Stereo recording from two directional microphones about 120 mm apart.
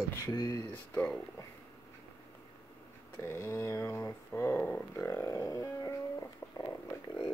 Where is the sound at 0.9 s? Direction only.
5° left (ahead or behind).